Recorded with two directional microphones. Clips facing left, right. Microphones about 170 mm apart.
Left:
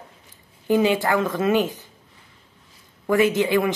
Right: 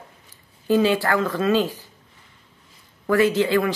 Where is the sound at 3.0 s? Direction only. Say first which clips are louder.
Even; 20° left (ahead or behind).